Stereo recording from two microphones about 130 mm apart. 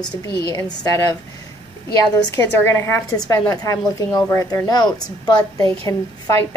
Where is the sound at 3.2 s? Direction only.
30° left (ahead or behind).